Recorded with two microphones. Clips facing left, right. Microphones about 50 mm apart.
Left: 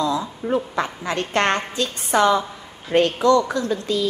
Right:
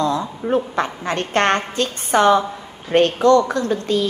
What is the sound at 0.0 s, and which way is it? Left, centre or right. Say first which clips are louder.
A woman's voice: right 2 dB; right.